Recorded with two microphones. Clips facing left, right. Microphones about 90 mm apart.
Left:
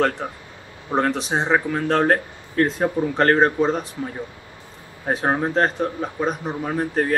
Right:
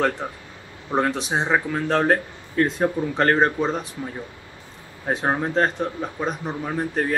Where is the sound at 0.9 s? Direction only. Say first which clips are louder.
Left 1 dB; centre (ahead or behind).